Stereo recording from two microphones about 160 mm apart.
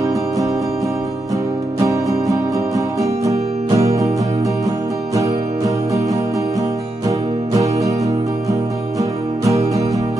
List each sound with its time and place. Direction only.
1.9 s music: 20° right (ahead or behind)
7.1 s music: 20° right (ahead or behind)